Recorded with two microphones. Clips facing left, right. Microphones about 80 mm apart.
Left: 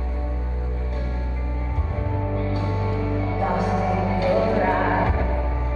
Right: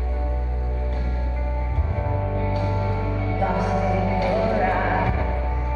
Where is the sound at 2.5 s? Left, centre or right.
Left.